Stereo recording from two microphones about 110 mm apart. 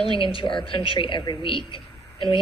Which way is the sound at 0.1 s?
50° left (ahead or behind).